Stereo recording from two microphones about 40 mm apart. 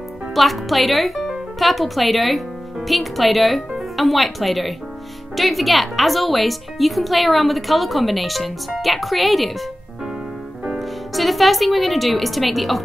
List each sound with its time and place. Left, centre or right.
0.3 s a woman's voice: centre
10.8 s a woman's voice: centre